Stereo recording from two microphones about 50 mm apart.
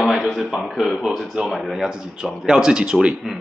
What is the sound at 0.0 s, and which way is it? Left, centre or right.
A man's voice, centre.